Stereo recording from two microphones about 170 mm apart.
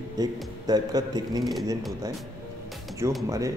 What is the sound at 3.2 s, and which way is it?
Speech, 20° right (ahead or behind).